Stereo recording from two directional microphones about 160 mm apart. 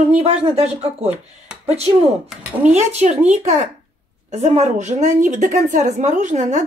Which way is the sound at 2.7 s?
45° right (ahead or behind).